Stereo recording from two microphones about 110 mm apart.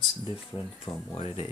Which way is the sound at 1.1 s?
60° left (ahead or behind).